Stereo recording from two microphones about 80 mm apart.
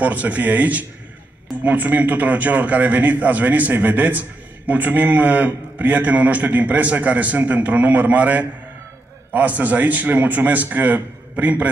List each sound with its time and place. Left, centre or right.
0.0 s a man's voice: centre